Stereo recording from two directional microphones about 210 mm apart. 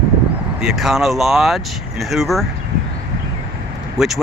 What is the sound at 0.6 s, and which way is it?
Speech, centre (ahead or behind).